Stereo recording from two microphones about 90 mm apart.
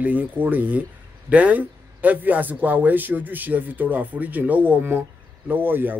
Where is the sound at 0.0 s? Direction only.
20° right (ahead or behind).